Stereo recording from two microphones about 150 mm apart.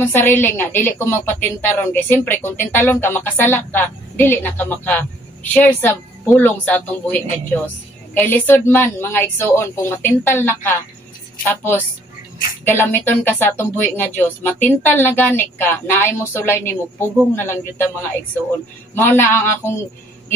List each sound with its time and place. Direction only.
0.0 s a woman's voice: 15° left (ahead or behind)
18.9 s a woman's voice: 15° left (ahead or behind)